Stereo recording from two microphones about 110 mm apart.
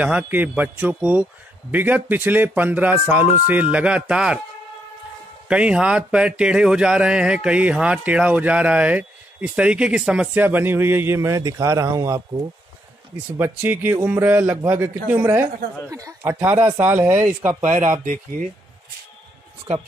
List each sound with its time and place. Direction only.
0.0 s speech: 10° right (ahead or behind)
5.5 s speech: 10° right (ahead or behind); by 12.2 s 30° right (ahead or behind)
13.4 s speech: 20° right (ahead or behind)
15.9 s speech: 30° right (ahead or behind)
16.3 s speech: 15° right (ahead or behind)
17.6 s speech: 90° right